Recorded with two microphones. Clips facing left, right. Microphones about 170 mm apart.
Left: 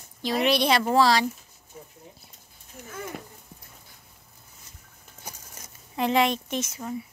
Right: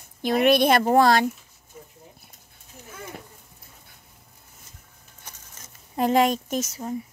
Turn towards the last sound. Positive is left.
turn(degrees=-35)  # may be behind; listen again after turning